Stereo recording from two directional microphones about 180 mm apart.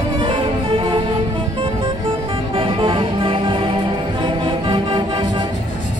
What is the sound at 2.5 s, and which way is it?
Music, 30° right (ahead or behind).